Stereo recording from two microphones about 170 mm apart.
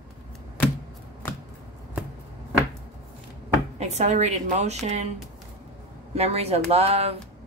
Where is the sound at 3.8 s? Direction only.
40° right (ahead or behind).